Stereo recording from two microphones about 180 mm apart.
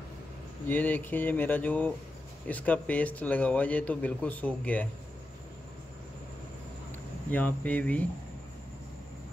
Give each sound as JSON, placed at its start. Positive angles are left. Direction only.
{"t": 0.7, "sound": "a man's voice", "side_deg": 10}
{"t": 7.2, "sound": "a man's voice", "side_deg": 10}